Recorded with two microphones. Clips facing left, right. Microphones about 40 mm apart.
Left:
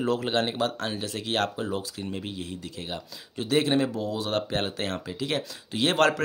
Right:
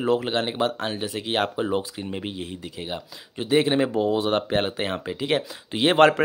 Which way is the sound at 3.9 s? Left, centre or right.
Right.